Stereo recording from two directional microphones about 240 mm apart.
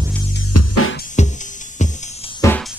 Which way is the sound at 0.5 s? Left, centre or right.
Left.